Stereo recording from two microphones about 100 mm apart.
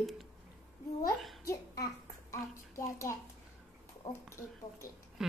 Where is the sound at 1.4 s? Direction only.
35° left (ahead or behind).